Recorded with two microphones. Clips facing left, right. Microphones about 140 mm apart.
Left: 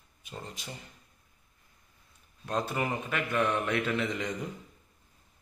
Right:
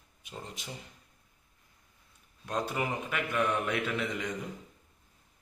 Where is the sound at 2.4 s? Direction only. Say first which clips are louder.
Left 1 dB; 10° right (ahead or behind).